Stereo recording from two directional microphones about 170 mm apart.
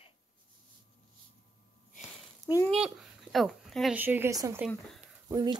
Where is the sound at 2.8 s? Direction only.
Centre (ahead or behind).